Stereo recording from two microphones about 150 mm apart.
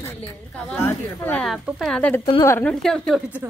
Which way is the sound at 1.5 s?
Centre (ahead or behind).